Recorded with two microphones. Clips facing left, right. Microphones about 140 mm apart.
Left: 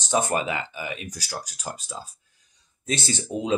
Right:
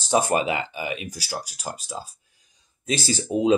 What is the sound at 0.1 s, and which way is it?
Speech, 10° right (ahead or behind).